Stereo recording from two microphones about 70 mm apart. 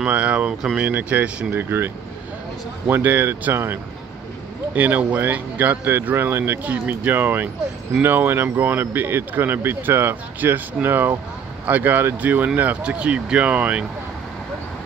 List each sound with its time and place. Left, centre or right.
0.0 s speech: centre
1.6 s speech: right
2.9 s speech: right